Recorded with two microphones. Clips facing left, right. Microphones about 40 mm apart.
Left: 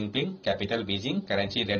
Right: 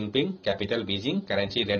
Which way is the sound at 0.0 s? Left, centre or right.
Centre.